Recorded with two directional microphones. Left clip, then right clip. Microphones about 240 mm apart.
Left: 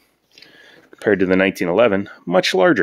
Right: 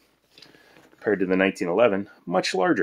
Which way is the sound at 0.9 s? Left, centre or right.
Left.